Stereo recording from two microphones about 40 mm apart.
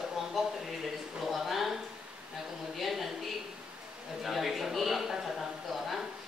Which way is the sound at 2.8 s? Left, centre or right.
Centre.